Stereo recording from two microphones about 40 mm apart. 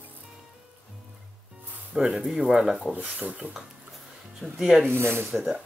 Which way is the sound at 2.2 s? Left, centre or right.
Centre.